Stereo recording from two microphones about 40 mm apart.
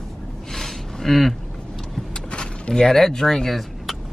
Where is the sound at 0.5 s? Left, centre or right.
Centre.